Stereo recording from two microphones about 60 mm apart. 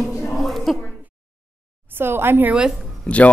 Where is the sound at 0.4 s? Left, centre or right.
Centre.